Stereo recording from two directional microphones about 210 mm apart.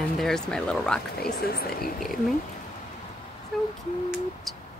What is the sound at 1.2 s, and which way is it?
Speech, 45° left (ahead or behind).